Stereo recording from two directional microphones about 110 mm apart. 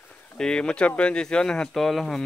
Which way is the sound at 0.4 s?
10° left (ahead or behind).